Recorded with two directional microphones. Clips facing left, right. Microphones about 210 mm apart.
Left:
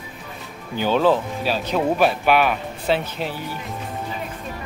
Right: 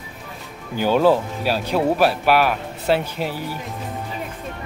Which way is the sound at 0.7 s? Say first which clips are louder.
Right 2 dB; 10° right (ahead or behind).